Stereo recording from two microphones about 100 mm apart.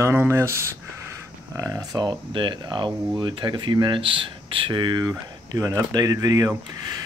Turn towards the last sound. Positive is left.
turn(degrees=-35)  # may be behind; listen again after turning